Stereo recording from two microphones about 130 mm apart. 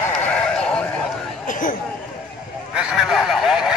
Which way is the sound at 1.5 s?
90° left.